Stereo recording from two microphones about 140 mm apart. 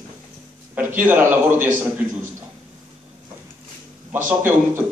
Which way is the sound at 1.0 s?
15° right (ahead or behind).